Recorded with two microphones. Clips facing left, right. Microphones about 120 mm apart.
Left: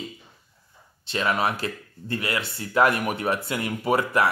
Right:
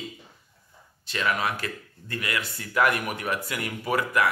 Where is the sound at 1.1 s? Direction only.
30° left (ahead or behind).